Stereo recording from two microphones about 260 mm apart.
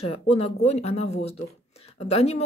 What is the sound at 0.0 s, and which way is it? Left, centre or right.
Speech, left.